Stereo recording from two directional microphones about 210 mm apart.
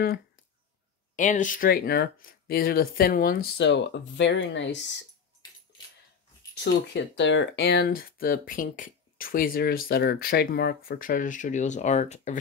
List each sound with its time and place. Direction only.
1.1 s speech: 35° left (ahead or behind); by 5.0 s 60° left (ahead or behind)
6.6 s speech: 55° left (ahead or behind); by 12.4 s 35° left (ahead or behind)